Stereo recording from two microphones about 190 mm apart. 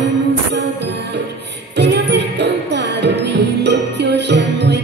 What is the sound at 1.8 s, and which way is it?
Music, 65° right (ahead or behind).